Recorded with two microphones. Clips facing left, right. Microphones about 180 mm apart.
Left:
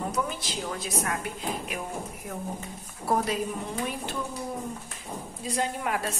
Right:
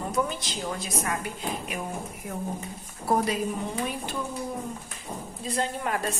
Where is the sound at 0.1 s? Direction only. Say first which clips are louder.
Right 2 dB; 5° left (ahead or behind).